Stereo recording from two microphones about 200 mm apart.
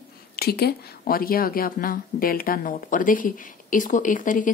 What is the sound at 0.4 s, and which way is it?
Speech, 50° left (ahead or behind).